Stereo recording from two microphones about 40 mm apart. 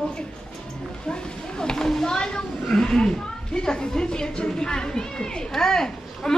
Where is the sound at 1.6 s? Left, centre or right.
Centre.